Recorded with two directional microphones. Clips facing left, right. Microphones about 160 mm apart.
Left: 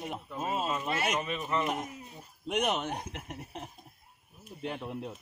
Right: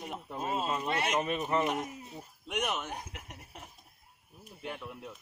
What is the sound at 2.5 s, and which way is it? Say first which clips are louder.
Speech: left 4 dB; 20° left (ahead or behind).